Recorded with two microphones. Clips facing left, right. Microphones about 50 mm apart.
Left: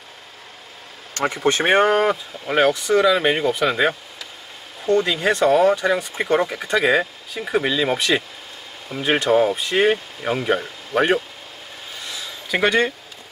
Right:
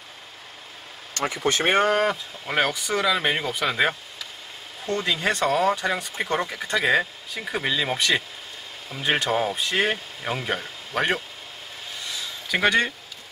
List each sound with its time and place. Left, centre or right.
1.2 s speech: left
1.9 s speech: centre
12.1 s a sound: centre